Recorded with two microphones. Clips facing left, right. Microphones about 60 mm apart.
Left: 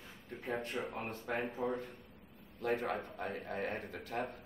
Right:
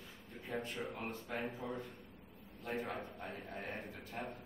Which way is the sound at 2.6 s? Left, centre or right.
Left.